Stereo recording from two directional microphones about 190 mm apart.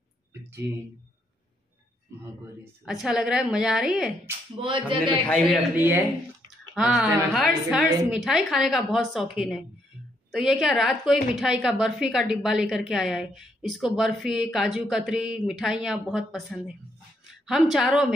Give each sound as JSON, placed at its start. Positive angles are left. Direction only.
{"t": 0.3, "sound": "speech", "side_deg": -10}
{"t": 2.6, "sound": "a woman's voice", "side_deg": 0}
{"t": 4.6, "sound": "a sound", "side_deg": -25}
{"t": 5.8, "sound": "a woman's voice", "side_deg": -10}